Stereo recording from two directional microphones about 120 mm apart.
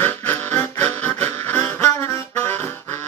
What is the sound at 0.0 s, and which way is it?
Music, 15° left (ahead or behind).